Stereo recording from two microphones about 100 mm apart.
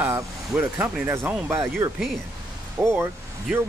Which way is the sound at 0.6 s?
15° right (ahead or behind).